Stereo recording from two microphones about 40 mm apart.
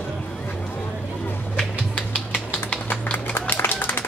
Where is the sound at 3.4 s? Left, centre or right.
Left.